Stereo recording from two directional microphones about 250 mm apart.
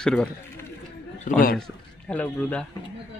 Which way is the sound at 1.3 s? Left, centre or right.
Left.